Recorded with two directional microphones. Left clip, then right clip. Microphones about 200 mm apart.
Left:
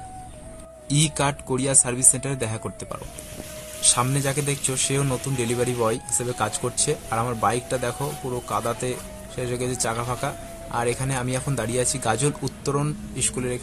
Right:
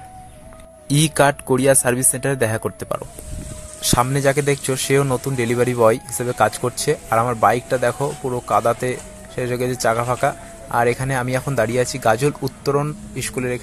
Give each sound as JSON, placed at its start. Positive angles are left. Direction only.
{"t": 0.8, "sound": "speech", "side_deg": -30}